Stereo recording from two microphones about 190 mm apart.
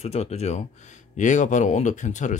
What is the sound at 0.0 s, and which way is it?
Speech, 35° left (ahead or behind).